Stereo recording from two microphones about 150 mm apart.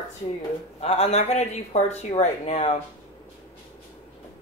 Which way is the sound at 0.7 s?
45° left (ahead or behind).